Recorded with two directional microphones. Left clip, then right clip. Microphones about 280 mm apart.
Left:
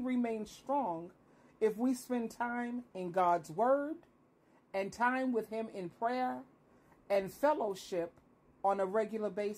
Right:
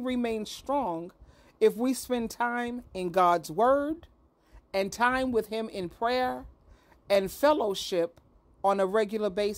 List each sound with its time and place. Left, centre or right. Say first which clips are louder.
0.0 s speech: right 6 dB; right